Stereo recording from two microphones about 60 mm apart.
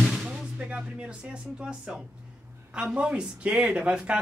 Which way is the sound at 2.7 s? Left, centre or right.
Centre.